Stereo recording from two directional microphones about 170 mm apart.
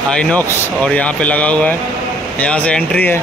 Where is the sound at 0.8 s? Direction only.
5° left (ahead or behind).